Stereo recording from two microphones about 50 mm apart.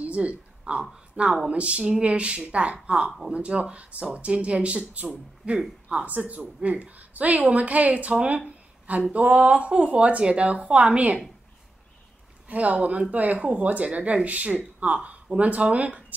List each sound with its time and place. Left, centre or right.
0.0 s a sound: right
1.1 s speech: centre
3.1 s speech: centre
3.3 s a woman's voice: right
8.5 s a sound: right
9.1 s speech: right
12.7 s speech: right